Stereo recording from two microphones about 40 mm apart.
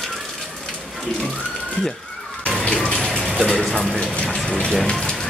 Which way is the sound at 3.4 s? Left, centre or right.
Centre.